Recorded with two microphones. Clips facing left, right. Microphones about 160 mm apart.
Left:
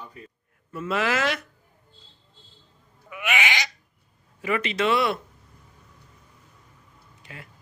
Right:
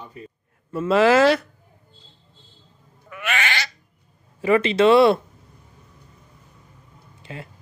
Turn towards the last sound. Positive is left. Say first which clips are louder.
# right 8 dB
turn(degrees=-25)  # may be behind; listen again after turning